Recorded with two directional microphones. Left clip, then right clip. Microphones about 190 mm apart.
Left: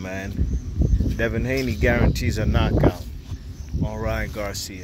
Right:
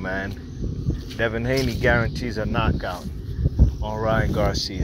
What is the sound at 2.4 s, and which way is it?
Speech, 40° left (ahead or behind).